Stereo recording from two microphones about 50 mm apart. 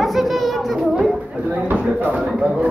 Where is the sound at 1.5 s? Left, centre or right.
Right.